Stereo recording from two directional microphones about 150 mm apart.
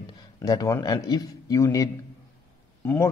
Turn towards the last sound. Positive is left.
turn(degrees=15)  # may be behind; listen again after turning